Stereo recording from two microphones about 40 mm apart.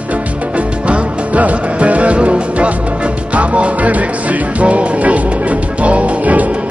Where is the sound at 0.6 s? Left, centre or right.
Right.